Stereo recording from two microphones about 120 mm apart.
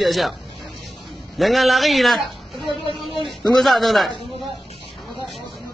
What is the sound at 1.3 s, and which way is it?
Speech, centre (ahead or behind).